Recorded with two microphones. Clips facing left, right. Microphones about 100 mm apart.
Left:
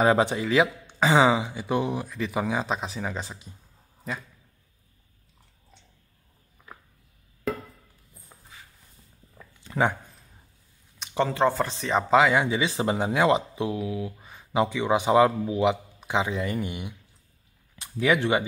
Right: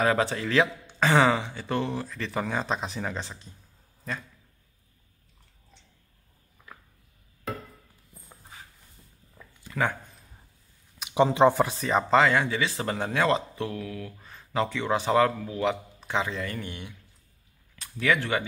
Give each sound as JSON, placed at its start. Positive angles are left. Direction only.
{"t": 0.0, "sound": "speech", "side_deg": 20}
{"t": 9.7, "sound": "a sound", "side_deg": 20}
{"t": 11.1, "sound": "speech", "side_deg": -15}
{"t": 11.8, "sound": "speech", "side_deg": 0}
{"t": 12.4, "sound": "speech", "side_deg": 20}